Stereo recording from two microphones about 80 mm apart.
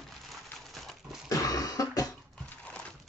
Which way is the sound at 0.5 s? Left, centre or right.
Centre.